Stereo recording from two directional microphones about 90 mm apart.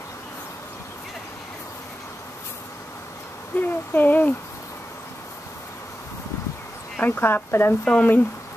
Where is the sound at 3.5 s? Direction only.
20° left (ahead or behind).